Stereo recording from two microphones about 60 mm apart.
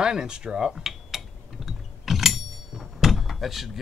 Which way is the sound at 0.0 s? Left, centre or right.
Centre.